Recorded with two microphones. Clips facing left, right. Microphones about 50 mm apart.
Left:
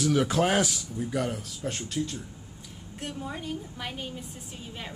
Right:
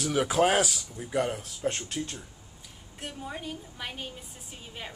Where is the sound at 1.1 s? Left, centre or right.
Centre.